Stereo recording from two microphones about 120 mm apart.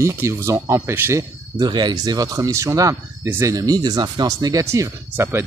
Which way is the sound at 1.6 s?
35° right (ahead or behind).